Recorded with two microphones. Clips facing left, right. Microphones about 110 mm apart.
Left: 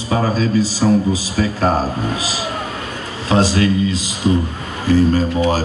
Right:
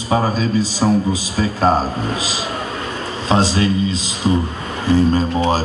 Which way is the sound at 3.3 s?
20° right (ahead or behind).